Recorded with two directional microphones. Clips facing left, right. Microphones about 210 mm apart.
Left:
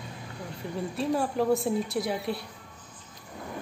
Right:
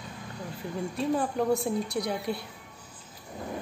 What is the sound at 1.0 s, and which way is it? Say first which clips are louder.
Speech: left 1 dB; centre (ahead or behind).